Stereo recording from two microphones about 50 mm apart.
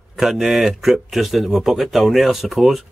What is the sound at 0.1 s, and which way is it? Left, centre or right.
Speech, centre.